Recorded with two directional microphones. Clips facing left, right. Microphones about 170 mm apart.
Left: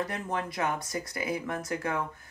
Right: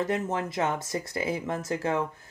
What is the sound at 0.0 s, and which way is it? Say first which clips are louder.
Speech: right 4 dB; 25° right (ahead or behind).